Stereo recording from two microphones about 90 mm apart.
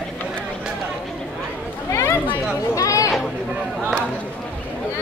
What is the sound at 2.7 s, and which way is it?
Chatter, 35° left (ahead or behind).